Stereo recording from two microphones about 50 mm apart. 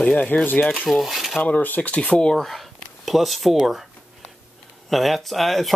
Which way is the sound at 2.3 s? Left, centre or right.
Centre.